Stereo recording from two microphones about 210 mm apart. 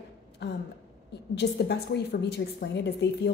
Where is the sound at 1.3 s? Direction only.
55° left (ahead or behind).